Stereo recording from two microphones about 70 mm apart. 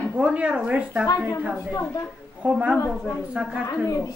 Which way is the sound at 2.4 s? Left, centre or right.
Centre.